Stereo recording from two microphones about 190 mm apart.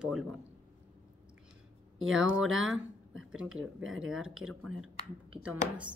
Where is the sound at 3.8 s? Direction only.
90° right.